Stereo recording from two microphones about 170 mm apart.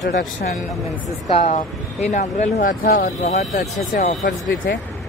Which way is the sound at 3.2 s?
45° left (ahead or behind).